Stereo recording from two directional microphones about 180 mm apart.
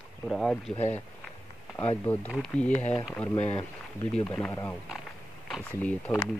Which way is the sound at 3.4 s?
30° left (ahead or behind).